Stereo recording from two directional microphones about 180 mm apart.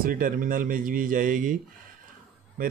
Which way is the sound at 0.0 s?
50° right (ahead or behind).